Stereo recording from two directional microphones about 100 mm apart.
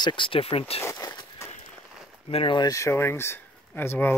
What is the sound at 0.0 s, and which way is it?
Speech, 55° left (ahead or behind).